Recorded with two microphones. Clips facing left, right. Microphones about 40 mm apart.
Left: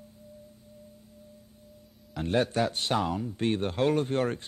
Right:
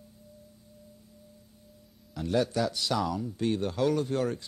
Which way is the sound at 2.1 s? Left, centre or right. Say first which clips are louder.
Left 1 dB; left.